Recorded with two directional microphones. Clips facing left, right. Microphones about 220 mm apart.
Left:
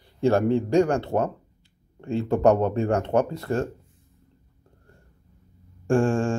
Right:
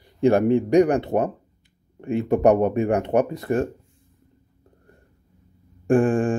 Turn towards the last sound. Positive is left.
turn(degrees=-15)  # may be behind; listen again after turning